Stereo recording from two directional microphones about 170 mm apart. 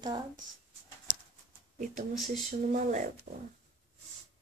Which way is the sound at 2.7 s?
45° right (ahead or behind).